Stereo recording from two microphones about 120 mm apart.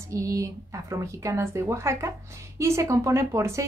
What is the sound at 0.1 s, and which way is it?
Speech, 25° right (ahead or behind).